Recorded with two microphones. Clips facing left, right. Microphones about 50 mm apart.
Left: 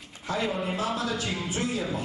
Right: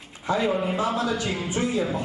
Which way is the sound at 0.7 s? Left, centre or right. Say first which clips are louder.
Right 4 dB; centre.